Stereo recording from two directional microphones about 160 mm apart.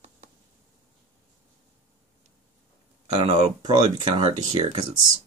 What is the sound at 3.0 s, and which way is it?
Speech, 30° right (ahead or behind).